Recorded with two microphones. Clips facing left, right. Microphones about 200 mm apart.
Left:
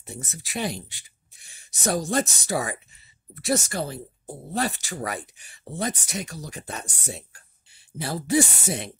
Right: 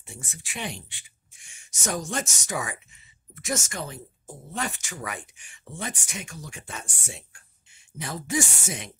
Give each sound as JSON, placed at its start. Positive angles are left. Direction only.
{"t": 0.0, "sound": "speech", "side_deg": 40}